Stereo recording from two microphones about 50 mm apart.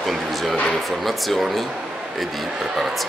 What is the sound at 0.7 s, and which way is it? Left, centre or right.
Speech, centre.